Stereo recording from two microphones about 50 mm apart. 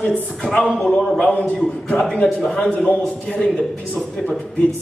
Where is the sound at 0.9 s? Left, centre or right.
Left.